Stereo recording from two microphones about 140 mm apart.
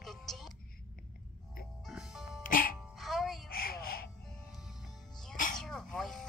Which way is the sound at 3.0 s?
Centre (ahead or behind).